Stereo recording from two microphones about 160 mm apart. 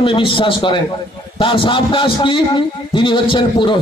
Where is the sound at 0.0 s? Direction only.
30° left (ahead or behind).